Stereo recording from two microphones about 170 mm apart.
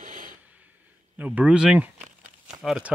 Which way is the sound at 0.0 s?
50° right (ahead or behind).